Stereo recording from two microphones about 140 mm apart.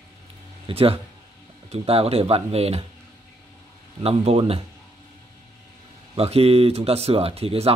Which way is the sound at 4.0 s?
45° right (ahead or behind).